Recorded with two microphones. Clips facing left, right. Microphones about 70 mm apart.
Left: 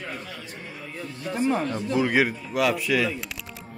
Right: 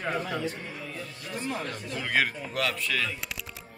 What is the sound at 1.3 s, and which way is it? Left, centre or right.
Speech, left.